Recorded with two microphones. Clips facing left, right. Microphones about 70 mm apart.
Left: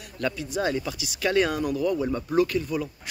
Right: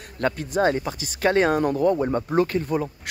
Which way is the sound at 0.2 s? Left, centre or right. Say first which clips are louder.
Right 5 dB; right.